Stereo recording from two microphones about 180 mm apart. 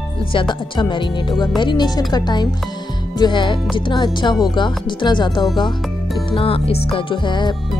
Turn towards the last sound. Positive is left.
turn(degrees=25)  # may be behind; listen again after turning